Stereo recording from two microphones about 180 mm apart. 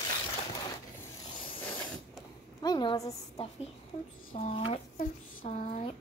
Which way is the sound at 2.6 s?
25° left (ahead or behind).